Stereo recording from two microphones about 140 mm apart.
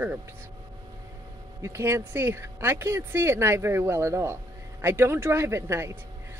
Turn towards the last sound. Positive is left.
turn(degrees=-20)  # may be behind; listen again after turning